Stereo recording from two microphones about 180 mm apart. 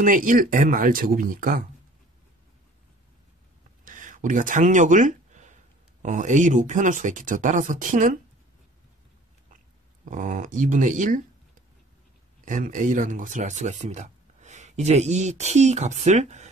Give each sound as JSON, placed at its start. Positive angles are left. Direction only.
{"t": 0.0, "sound": "speech", "side_deg": -45}
{"t": 3.8, "sound": "a sound", "side_deg": -45}
{"t": 6.0, "sound": "speech", "side_deg": -45}
{"t": 10.0, "sound": "speech", "side_deg": -45}
{"t": 12.4, "sound": "speech", "side_deg": -45}